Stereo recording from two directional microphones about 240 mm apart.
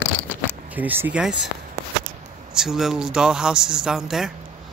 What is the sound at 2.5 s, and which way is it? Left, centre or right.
Speech, centre.